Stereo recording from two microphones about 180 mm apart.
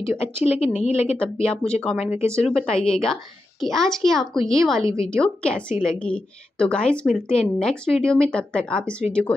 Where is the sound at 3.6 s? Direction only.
Centre (ahead or behind).